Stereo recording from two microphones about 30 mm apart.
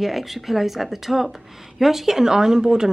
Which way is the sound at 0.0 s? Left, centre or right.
Centre.